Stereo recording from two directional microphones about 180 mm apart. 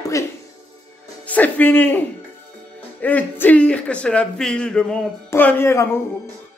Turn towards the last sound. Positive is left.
turn(degrees=15)  # may be behind; listen again after turning